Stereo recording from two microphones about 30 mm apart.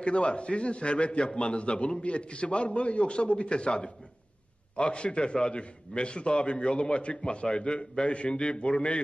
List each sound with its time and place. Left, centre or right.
0.0 s a man's voice: left